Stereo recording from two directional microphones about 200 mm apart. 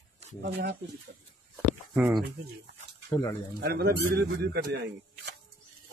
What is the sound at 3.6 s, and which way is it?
Speech, 50° right (ahead or behind).